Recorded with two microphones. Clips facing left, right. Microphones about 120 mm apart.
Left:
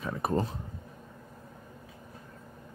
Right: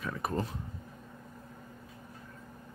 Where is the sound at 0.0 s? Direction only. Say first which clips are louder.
Left 4 dB; 30° left (ahead or behind).